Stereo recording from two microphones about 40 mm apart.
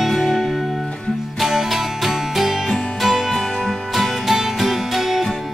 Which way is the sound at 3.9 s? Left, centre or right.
Centre.